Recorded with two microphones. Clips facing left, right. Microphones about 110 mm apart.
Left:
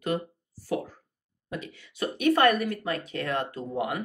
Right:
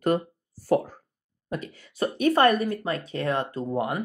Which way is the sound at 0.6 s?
45° right (ahead or behind).